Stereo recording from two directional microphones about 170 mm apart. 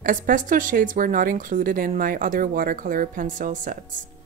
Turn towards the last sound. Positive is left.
turn(degrees=-50)  # may be behind; listen again after turning